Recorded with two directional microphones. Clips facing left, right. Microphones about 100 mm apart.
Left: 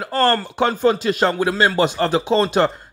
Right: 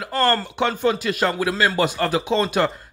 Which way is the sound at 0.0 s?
35° left (ahead or behind).